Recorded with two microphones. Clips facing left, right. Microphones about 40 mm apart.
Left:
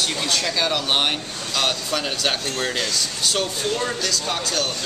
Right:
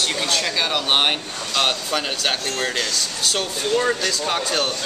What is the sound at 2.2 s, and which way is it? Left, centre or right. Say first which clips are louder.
Speech: right 1 dB; centre.